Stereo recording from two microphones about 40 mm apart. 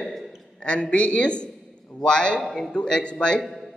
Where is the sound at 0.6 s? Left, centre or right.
Left.